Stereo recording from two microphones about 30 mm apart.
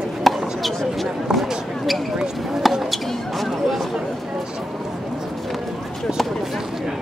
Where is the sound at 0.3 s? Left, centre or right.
Centre.